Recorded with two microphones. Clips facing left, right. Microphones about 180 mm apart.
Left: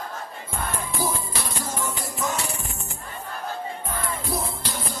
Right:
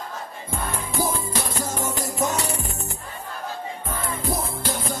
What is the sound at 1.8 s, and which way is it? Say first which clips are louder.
Music: right 4 dB; 40° right (ahead or behind).